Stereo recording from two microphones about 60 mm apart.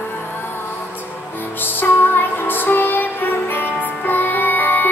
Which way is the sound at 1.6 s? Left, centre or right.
Left.